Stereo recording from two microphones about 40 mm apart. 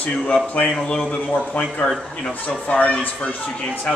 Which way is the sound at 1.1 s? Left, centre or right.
Left.